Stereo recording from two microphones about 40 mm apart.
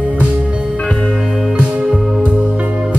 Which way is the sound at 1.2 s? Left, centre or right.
Centre.